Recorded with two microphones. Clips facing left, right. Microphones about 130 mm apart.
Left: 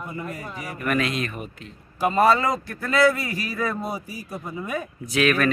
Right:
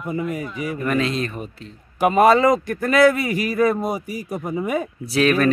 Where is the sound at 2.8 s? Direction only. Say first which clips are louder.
Right 4 dB; 90° right.